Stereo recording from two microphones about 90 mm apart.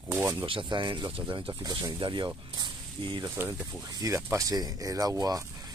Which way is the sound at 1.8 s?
60° right (ahead or behind).